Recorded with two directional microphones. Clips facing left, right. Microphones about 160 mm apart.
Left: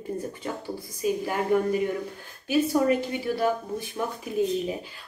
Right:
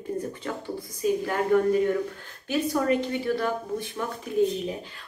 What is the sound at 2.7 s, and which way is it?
Speech, 10° left (ahead or behind).